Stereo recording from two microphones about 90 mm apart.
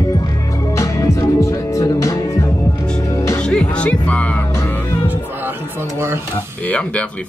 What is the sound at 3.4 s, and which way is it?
Music, 10° left (ahead or behind).